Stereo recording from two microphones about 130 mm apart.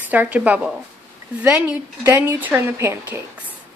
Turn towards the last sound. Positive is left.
turn(degrees=-20)  # may be behind; listen again after turning